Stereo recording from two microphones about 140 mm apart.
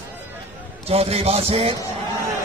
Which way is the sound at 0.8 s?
45° right (ahead or behind).